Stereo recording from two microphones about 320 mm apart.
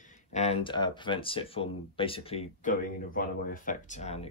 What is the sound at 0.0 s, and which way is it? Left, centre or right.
Speech, left.